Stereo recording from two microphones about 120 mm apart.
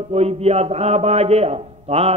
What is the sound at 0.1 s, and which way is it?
A man's voice, 60° right (ahead or behind).